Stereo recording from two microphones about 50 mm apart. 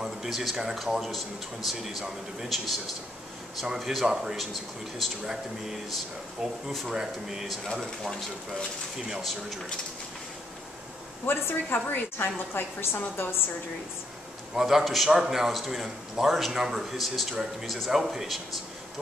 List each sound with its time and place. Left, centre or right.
0.0 s a man's voice: centre
9.2 s a man's voice: centre
11.2 s a woman's voice: left
14.5 s a man's voice: centre